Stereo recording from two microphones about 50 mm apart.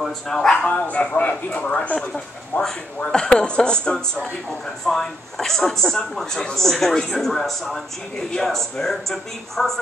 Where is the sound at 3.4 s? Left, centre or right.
Centre.